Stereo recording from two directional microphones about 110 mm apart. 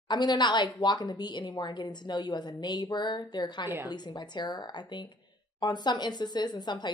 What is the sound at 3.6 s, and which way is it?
Speech, 20° right (ahead or behind).